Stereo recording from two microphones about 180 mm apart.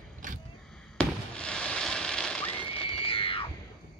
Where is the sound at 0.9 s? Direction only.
5° left (ahead or behind).